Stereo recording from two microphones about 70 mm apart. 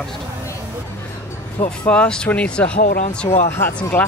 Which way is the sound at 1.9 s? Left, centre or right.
Centre.